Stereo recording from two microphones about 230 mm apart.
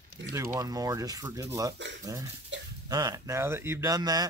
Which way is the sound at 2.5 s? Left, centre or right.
Right.